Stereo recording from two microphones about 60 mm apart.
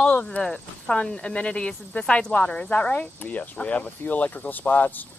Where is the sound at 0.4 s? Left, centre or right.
Centre.